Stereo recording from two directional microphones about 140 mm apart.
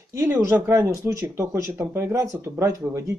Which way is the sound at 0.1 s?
20° right (ahead or behind).